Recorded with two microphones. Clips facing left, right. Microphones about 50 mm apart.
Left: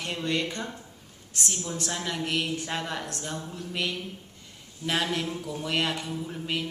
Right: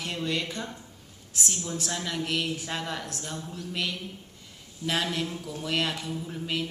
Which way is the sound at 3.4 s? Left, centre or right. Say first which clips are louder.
Left 1 dB; centre.